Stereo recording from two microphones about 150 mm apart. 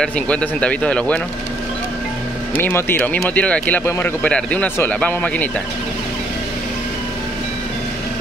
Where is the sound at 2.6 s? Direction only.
15° left (ahead or behind).